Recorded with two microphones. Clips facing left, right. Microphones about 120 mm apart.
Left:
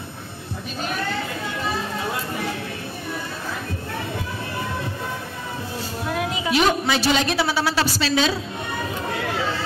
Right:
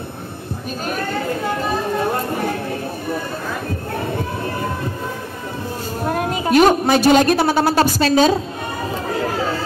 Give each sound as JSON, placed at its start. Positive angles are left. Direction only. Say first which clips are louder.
{"t": 0.8, "sound": "chatter", "louder": "right 5 dB", "side_deg": -45}
{"t": 6.0, "sound": "a woman's voice", "louder": "right 5 dB", "side_deg": -45}